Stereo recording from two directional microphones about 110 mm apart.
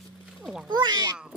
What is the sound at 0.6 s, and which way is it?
Speech, 40° right (ahead or behind).